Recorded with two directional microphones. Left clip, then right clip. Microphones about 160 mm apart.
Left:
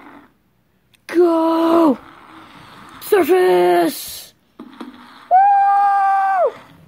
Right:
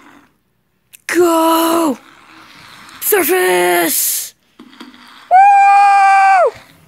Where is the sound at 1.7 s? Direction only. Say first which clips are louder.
Left 1 dB; 5° left (ahead or behind).